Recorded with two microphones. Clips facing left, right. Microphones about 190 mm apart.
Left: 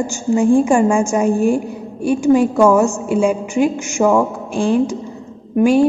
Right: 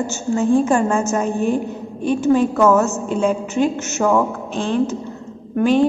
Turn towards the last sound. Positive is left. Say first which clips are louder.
# left 3 dB
turn(degrees=10)  # may be behind; listen again after turning